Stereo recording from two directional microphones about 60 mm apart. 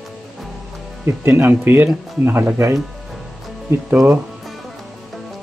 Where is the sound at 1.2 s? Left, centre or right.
Right.